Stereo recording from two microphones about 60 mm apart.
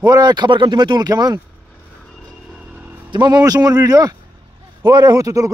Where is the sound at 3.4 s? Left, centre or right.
Right.